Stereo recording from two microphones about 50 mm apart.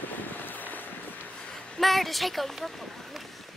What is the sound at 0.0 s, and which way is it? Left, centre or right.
Boat, left.